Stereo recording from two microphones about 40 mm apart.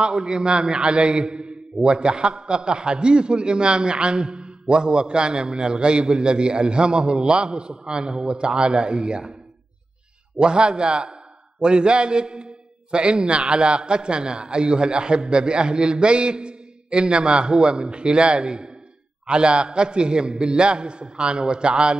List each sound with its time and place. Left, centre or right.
0.0 s a man's voice: right
10.4 s a man's voice: right